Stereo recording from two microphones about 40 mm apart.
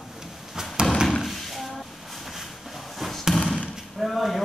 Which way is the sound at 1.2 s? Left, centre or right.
Centre.